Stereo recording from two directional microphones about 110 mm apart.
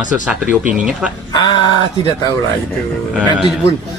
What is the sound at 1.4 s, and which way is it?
Speech, 45° left (ahead or behind).